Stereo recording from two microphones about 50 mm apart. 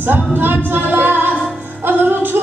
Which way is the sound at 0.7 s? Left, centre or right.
Right.